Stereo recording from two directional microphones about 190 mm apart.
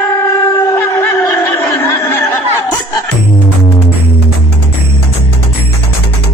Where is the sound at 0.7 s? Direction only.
15° left (ahead or behind).